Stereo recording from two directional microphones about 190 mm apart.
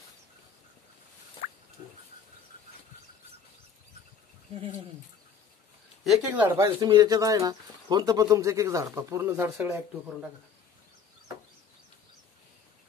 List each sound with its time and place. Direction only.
6.0 s speech: 10° right (ahead or behind)